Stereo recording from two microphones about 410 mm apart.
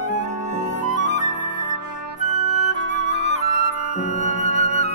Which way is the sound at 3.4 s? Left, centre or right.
Centre.